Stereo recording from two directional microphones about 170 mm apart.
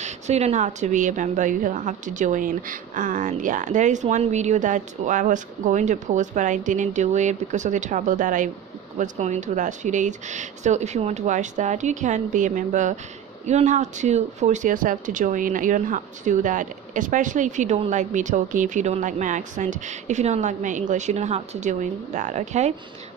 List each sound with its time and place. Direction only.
0.0 s a woman's voice: 40° right (ahead or behind)